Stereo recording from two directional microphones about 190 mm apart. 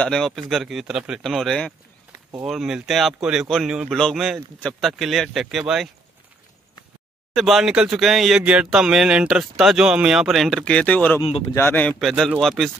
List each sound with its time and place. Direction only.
0.0 s speech: 5° left (ahead or behind)
7.3 s speech: centre (ahead or behind)
11.2 s speech: 30° left (ahead or behind)
11.5 s speech: 10° left (ahead or behind)